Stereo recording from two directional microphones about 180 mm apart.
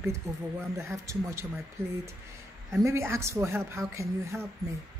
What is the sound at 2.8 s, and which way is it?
Speech, 15° right (ahead or behind).